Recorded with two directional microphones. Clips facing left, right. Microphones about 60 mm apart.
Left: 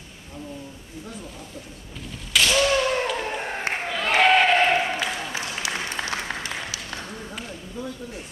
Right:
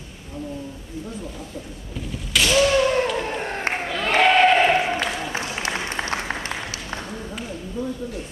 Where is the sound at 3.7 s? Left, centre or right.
Centre.